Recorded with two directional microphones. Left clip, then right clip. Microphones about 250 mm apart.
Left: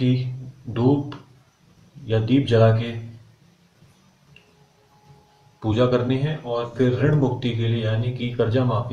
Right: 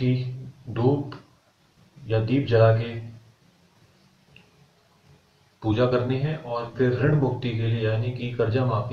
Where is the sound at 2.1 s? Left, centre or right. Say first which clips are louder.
Left 3 dB; left.